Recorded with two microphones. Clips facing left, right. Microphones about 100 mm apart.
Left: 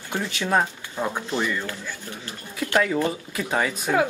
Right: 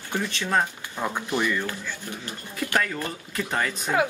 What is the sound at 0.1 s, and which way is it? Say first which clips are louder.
Speech: left 2 dB; 15° left (ahead or behind).